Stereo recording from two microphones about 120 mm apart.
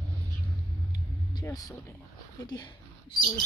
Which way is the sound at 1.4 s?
25° left (ahead or behind).